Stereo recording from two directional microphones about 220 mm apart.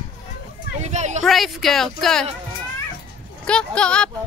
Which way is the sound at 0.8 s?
30° right (ahead or behind).